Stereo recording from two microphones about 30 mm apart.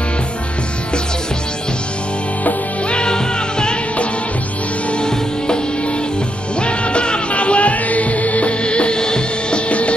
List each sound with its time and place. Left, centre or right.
2.9 s music: left
4.9 s music: left
6.6 s music: left
8.6 s music: left
9.7 s music: left